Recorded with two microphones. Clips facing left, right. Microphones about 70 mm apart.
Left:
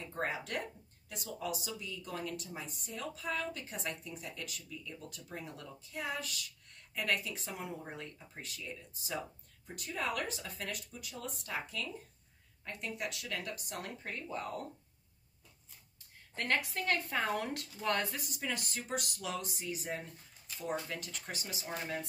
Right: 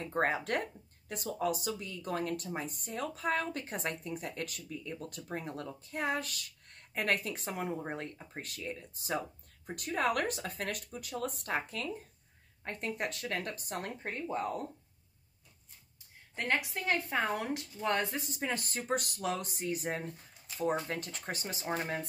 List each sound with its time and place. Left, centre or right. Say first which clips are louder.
0.1 s speech: right 6 dB; right
16.3 s a woman's voice: right 1 dB; centre; by 22.0 s right